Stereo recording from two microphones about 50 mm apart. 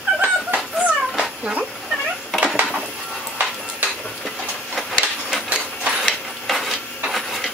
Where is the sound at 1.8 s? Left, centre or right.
Centre.